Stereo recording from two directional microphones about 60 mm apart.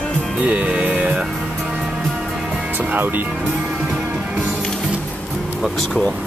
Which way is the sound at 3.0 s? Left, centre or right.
Right.